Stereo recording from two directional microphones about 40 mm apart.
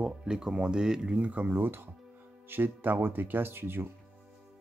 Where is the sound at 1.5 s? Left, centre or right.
Right.